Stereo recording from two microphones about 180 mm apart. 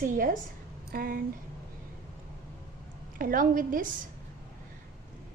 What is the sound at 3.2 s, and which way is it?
Speech, 50° right (ahead or behind).